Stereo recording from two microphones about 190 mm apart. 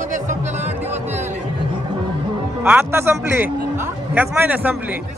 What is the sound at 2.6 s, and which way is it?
A man's voice, 10° right (ahead or behind).